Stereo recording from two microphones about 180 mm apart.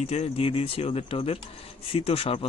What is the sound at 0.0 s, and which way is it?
Speech, 35° left (ahead or behind).